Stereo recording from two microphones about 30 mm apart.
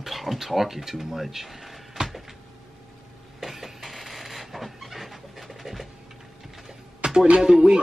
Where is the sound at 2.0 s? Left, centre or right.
Right.